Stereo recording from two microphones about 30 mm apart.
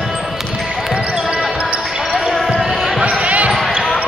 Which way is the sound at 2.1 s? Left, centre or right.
Centre.